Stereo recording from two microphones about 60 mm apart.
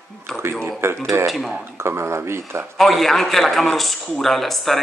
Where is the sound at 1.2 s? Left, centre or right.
Centre.